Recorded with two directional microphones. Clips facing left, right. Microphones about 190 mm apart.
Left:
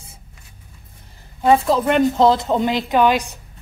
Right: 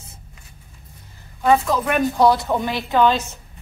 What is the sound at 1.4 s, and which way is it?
A woman's voice, 30° left (ahead or behind).